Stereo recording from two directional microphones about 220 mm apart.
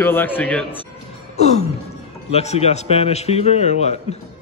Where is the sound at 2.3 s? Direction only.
30° left (ahead or behind).